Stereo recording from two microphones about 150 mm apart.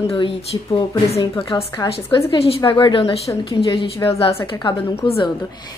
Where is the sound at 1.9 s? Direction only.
40° left (ahead or behind).